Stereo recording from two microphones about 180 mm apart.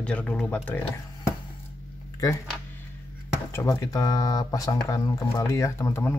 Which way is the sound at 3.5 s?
15° left (ahead or behind).